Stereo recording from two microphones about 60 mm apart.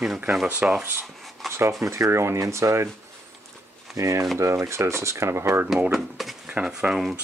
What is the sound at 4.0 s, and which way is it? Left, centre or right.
Speech, right.